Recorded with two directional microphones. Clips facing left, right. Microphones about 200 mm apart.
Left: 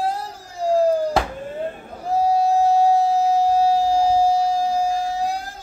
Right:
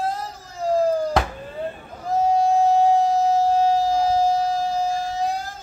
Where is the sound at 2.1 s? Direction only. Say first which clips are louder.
Left 1 dB; 10° left (ahead or behind).